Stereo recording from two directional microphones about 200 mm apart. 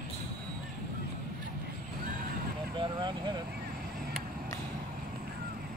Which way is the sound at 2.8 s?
25° right (ahead or behind).